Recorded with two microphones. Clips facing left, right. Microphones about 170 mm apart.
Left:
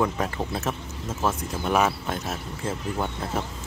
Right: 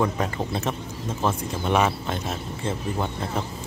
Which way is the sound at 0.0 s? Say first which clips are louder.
Right 1 dB; centre (ahead or behind).